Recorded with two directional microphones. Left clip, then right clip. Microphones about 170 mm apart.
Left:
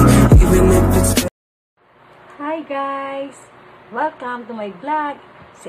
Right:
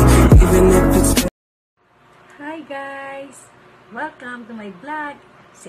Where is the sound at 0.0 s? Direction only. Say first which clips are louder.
Left 1 dB; centre (ahead or behind).